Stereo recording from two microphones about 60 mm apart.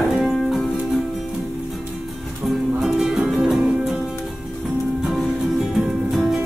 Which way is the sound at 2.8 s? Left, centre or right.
Centre.